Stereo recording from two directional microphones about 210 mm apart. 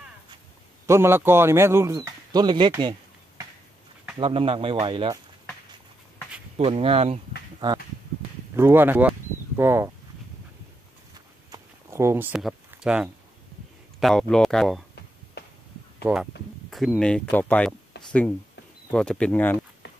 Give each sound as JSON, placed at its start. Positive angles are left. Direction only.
{"t": 0.8, "sound": "a man's voice", "side_deg": -10}
{"t": 6.5, "sound": "speech", "side_deg": -25}
{"t": 8.5, "sound": "speech", "side_deg": -10}
{"t": 11.5, "sound": "a sound", "side_deg": -15}
{"t": 13.9, "sound": "speech", "side_deg": 0}
{"t": 16.0, "sound": "speech", "side_deg": -10}
{"t": 17.9, "sound": "a sound", "side_deg": 55}
{"t": 18.9, "sound": "speech", "side_deg": 5}